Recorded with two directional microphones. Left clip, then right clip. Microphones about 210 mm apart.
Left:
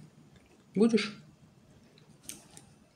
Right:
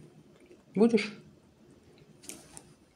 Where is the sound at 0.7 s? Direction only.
10° left (ahead or behind).